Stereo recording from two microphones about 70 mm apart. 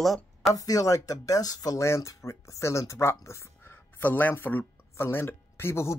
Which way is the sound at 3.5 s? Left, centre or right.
Left.